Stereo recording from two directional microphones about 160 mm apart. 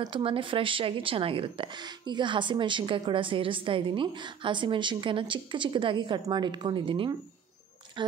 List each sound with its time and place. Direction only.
0.0 s a woman's voice: 30° right (ahead or behind)